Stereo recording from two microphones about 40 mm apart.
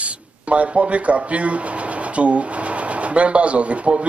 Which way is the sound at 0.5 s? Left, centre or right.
Right.